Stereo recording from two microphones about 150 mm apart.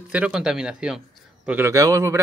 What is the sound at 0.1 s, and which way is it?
A man's voice, 5° right (ahead or behind).